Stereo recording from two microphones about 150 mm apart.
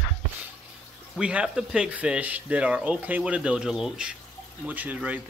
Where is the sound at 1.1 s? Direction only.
5° right (ahead or behind).